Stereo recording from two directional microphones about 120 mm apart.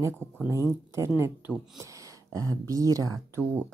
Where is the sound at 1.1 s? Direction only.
20° right (ahead or behind).